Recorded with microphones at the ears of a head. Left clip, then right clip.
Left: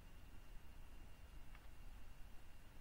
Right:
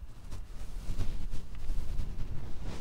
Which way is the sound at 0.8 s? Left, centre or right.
Right.